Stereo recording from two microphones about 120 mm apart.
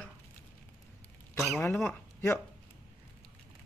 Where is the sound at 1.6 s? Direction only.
20° left (ahead or behind).